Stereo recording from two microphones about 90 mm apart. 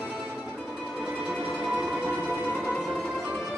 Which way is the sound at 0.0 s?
Centre (ahead or behind).